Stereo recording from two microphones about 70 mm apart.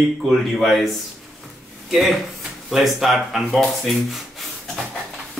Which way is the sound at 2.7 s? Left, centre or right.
Centre.